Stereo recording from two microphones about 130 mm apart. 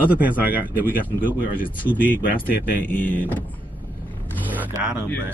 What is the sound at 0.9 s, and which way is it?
Speech, 90° left.